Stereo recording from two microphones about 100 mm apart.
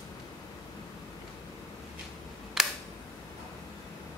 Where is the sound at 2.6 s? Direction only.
5° right (ahead or behind).